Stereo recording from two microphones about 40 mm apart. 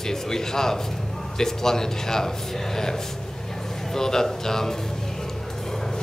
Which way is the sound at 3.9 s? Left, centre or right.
Centre.